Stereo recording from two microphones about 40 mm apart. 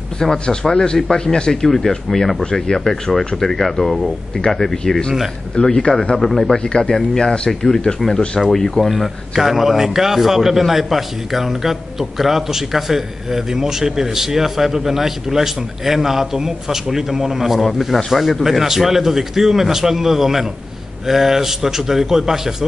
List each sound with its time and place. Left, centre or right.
0.2 s speech: centre
8.9 s a man's voice: centre